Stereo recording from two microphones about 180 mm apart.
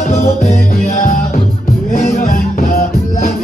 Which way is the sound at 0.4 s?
50° left (ahead or behind).